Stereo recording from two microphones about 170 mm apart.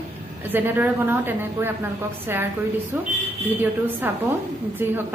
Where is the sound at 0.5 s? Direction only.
10° right (ahead or behind).